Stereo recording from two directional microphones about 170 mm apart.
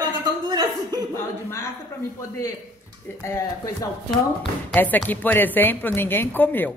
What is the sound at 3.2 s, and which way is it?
A woman's voice, 15° left (ahead or behind).